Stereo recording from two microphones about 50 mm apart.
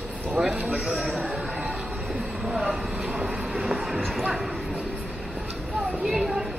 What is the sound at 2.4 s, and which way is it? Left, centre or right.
Speech, centre.